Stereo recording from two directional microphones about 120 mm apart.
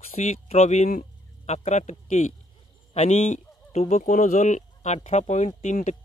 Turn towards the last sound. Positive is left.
turn(degrees=85)